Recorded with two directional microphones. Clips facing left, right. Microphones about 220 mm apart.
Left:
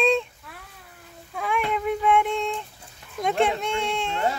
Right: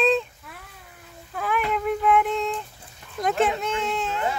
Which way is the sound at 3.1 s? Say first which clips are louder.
Even; centre (ahead or behind).